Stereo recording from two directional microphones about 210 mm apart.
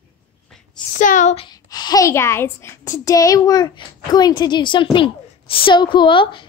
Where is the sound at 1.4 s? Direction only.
20° left (ahead or behind).